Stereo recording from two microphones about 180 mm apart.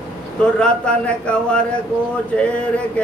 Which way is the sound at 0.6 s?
5° left (ahead or behind).